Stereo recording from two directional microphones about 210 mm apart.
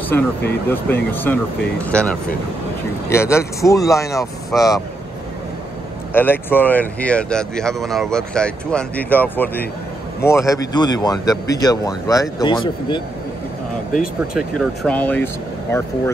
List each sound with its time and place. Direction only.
0.1 s speech: 10° left (ahead or behind)
6.1 s speech: 10° left (ahead or behind)
14.2 s speech: centre (ahead or behind)